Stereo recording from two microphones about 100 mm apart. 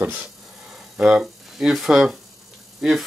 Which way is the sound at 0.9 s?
10° right (ahead or behind).